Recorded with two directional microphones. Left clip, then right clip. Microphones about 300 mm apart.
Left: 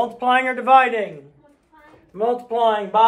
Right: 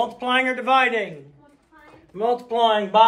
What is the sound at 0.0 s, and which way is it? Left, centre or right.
A man's voice, centre.